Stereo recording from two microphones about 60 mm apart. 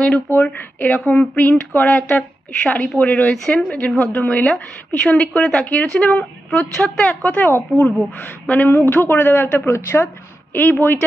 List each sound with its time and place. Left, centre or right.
0.3 s speech: left
3.4 s a woman's voice: centre
4.3 s speech: left
5.0 s a woman's voice: centre
7.2 s speech: left
8.7 s a woman's voice: left
10.5 s a woman's voice: left